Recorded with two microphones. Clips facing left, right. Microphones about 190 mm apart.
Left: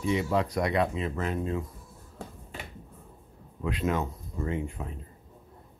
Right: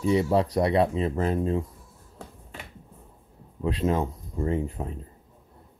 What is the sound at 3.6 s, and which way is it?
Speech, 30° right (ahead or behind).